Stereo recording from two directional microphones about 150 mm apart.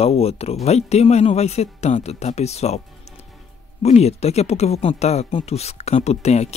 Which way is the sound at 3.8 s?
45° left (ahead or behind).